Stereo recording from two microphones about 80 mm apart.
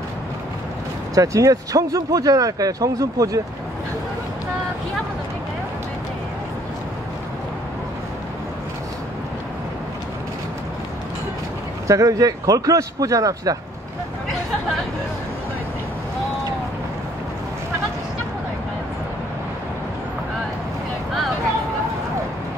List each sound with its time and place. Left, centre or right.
1.1 s speech: right
11.9 s speech: right